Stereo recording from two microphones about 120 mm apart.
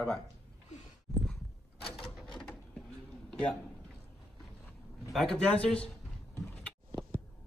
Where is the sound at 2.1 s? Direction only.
5° left (ahead or behind).